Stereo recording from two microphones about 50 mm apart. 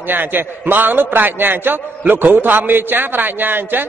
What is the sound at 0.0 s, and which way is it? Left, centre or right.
A man's voice, right.